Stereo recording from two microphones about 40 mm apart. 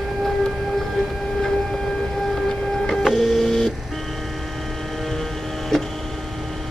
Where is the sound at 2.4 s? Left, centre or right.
Centre.